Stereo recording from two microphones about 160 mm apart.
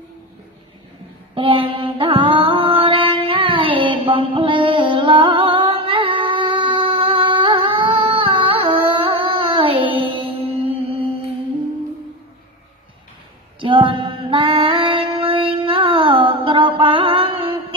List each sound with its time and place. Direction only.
1.3 s mantra: 35° right (ahead or behind)
13.6 s female singing: 30° right (ahead or behind)